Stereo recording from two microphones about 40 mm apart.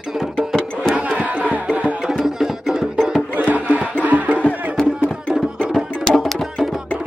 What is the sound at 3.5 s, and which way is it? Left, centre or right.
Battle cry, right.